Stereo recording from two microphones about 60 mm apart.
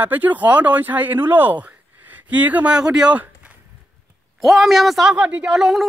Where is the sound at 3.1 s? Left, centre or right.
Right.